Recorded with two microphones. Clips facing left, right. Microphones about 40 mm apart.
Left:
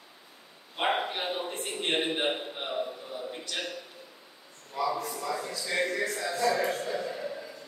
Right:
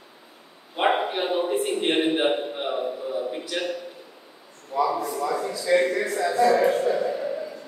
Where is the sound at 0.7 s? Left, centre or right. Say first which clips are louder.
Right 6 dB; centre.